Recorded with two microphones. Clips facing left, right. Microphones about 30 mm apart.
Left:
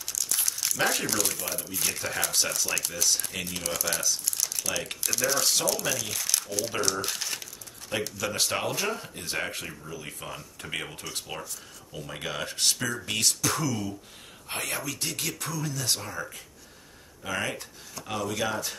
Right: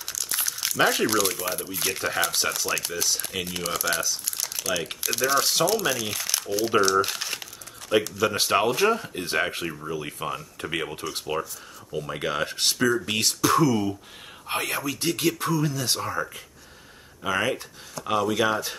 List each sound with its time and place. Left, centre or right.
0.1 s crumpling: right
0.7 s speech: centre
1.0 s speech: right
3.5 s speech: right
4.2 s crumpling: right
4.6 s speech: centre
8.6 s speech: right
17.2 s speech: right